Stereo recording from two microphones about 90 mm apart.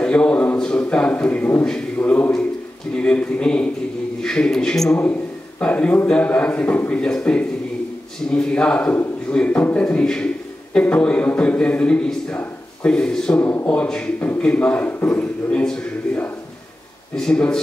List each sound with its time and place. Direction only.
0.0 s a man's voice: 10° left (ahead or behind)
13.4 s a man's voice: 20° left (ahead or behind)
17.1 s a man's voice: 10° left (ahead or behind)